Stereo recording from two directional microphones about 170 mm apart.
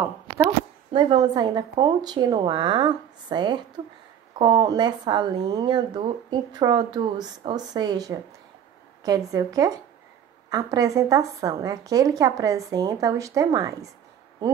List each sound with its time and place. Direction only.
0.9 s a woman's voice: 25° right (ahead or behind)
9.3 s a woman's voice: 20° right (ahead or behind)